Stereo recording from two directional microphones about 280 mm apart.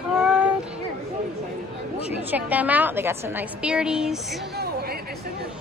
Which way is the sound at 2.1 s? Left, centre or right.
Centre.